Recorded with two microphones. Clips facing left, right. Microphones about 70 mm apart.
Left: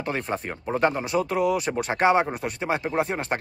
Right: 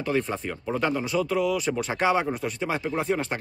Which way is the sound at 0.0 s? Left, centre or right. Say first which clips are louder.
Right 2 dB; left.